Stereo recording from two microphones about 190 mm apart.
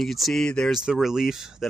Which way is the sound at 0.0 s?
Centre (ahead or behind).